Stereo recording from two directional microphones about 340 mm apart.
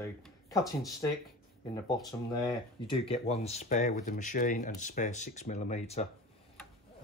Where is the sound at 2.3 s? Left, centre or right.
Centre.